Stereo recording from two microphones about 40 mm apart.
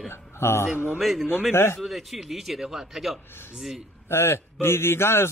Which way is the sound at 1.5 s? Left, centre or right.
Left.